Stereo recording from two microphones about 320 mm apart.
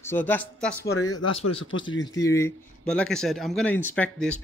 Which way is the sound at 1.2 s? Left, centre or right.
Left.